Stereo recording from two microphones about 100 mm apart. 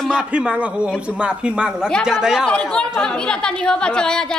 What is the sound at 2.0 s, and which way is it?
Speech, 5° right (ahead or behind).